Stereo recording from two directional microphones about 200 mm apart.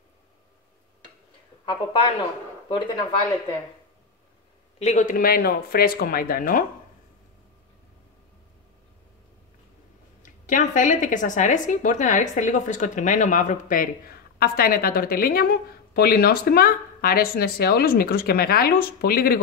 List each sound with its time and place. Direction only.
1.7 s speech: 25° left (ahead or behind)
4.7 s a woman's voice: 35° left (ahead or behind)
10.2 s a woman's voice: 40° left (ahead or behind)